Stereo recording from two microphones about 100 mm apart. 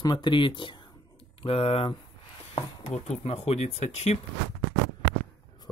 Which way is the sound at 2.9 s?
90° left.